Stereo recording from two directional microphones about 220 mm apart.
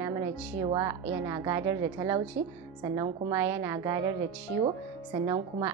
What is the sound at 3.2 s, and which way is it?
A woman's voice, 10° right (ahead or behind).